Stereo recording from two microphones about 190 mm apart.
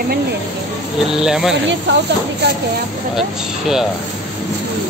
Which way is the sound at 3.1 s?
Centre (ahead or behind).